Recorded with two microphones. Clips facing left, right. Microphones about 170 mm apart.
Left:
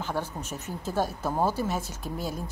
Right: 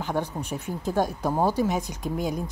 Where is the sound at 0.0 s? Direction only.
15° right (ahead or behind).